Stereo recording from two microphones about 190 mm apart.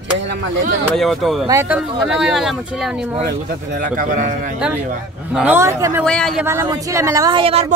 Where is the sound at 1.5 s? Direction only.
15° right (ahead or behind).